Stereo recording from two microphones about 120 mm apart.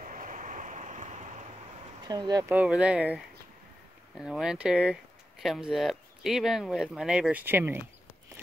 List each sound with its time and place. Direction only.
0.1 s vehicle: 90° right
2.0 s speech: 35° right (ahead or behind)
2.6 s speech: 10° right (ahead or behind)
4.2 s speech: 5° right (ahead or behind)
7.4 s speech: 15° right (ahead or behind)